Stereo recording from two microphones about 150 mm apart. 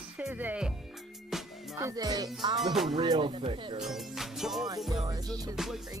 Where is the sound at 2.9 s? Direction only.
30° right (ahead or behind).